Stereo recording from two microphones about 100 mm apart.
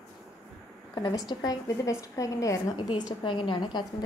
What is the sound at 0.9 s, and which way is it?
A woman's voice, 40° left (ahead or behind).